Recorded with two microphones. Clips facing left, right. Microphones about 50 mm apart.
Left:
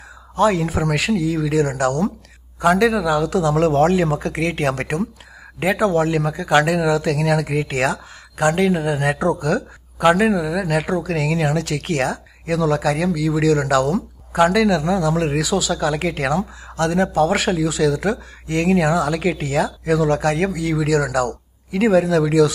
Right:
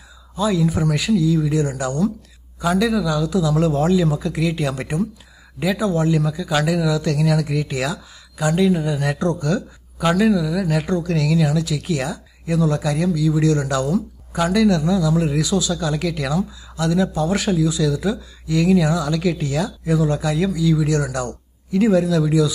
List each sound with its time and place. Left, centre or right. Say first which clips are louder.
0.4 s speech: left 2 dB; left
2.6 s speech: left 3 dB; left
5.8 s speech: left 3 dB; left
6.1 s speech: left 4 dB; left
9.4 s speech: left 2 dB; left
10.0 s speech: left 2 dB; left
11.5 s speech: left 1 dB; left
14.5 s speech: even; left
16.0 s speech: left 2 dB; left
17.6 s speech: left 2 dB; left
21.7 s speech: left 1 dB; left